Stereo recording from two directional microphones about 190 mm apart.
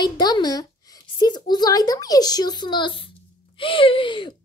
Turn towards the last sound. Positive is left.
turn(degrees=25)  # may be behind; listen again after turning